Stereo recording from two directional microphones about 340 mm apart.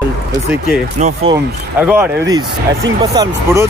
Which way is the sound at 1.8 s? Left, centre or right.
Centre.